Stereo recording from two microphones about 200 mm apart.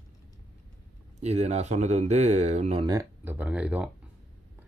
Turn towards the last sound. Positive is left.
turn(degrees=-5)  # may be behind; listen again after turning